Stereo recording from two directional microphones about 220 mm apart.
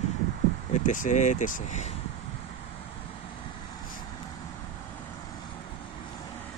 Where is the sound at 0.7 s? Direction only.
35° left (ahead or behind).